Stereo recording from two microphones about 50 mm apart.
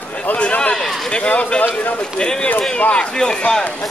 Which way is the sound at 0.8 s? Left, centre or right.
Centre.